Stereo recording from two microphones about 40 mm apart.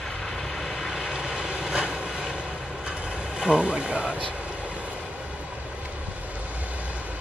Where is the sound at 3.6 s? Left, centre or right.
Right.